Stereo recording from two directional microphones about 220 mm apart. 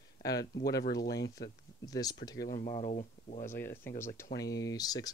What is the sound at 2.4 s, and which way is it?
Speech, 35° left (ahead or behind).